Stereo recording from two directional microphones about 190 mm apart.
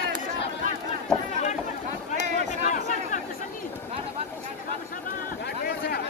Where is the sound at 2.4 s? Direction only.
40° left (ahead or behind).